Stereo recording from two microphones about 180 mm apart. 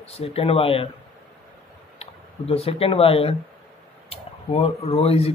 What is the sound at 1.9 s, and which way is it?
Speech, 35° left (ahead or behind).